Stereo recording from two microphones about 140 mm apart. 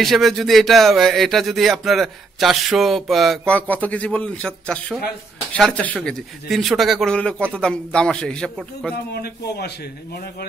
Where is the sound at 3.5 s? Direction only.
10° left (ahead or behind).